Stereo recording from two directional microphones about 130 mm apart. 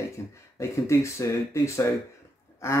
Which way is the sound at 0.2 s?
20° left (ahead or behind).